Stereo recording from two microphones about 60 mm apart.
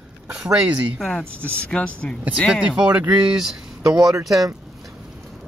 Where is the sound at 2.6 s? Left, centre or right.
Centre.